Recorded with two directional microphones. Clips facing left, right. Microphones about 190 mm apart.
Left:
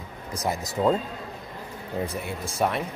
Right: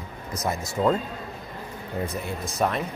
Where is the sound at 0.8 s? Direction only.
15° left (ahead or behind).